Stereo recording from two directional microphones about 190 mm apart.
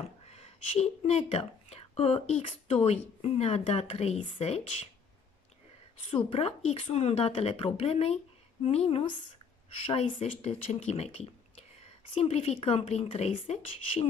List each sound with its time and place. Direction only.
0.3 s speech: 35° left (ahead or behind)
6.0 s speech: 30° left (ahead or behind)